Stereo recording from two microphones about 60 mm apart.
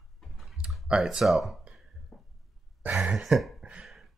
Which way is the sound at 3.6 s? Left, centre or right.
Centre.